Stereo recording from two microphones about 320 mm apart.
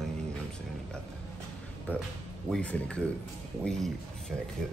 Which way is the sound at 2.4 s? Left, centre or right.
Centre.